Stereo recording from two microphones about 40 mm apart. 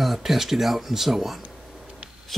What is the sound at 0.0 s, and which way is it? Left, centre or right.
Speech, centre.